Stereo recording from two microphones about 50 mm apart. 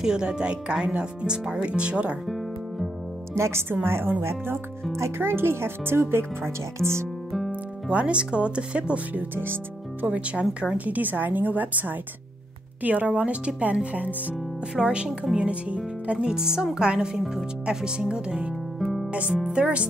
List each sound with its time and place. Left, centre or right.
0.0 s speech: centre
2.2 s music: centre
3.3 s speech: right
3.6 s speech: right
7.9 s speech: right
9.1 s speech: right
10.0 s a woman's voice: right
14.8 s speech: right
17.2 s speech: centre
17.6 s speech: centre
18.8 s music: centre
19.1 s speech: right